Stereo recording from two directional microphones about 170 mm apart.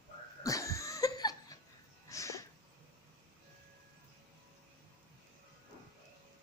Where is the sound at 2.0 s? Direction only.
20° left (ahead or behind).